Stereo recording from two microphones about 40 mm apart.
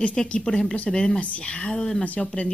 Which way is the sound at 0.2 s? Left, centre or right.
Centre.